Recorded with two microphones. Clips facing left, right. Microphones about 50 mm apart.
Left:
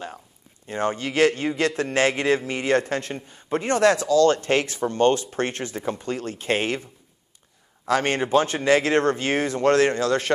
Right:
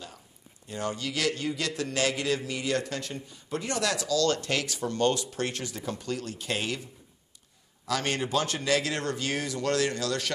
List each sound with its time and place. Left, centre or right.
0.7 s a man's voice: left
7.8 s a man's voice: left